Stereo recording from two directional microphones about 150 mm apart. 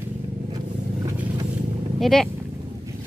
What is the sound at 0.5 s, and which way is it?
Vehicle, 30° right (ahead or behind).